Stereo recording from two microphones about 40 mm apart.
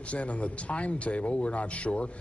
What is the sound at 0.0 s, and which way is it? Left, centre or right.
A man's voice, left.